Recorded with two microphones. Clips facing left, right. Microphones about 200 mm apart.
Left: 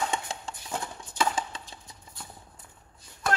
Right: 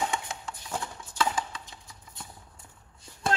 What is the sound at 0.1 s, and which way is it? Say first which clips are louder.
Clip-clop: left 1 dB; 30° left (ahead or behind).